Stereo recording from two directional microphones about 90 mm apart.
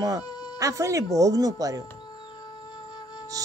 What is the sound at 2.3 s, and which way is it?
Music, 55° left (ahead or behind).